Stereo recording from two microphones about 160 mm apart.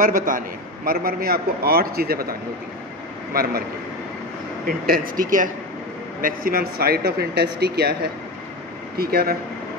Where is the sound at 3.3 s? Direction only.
65° right (ahead or behind).